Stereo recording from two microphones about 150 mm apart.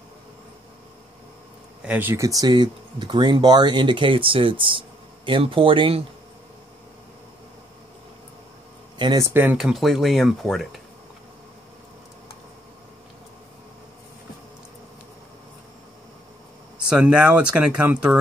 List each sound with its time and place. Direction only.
1.8 s speech: 10° right (ahead or behind); by 6.0 s 35° right (ahead or behind)
8.9 s speech: 30° right (ahead or behind)
9.6 s speech: centre (ahead or behind)
16.7 s speech: 5° right (ahead or behind)